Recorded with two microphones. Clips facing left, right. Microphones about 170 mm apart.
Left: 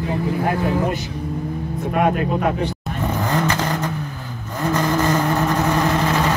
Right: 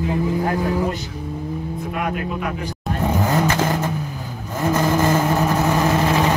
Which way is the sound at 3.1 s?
20° right (ahead or behind).